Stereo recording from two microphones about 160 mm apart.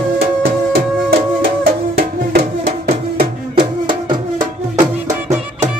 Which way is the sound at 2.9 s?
35° right (ahead or behind).